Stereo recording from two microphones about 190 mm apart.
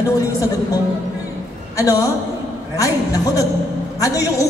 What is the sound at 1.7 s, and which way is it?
Speech, 15° left (ahead or behind).